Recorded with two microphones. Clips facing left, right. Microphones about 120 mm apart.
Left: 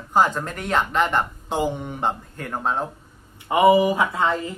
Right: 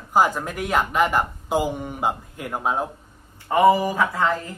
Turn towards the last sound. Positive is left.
turn(degrees=20)  # may be behind; listen again after turning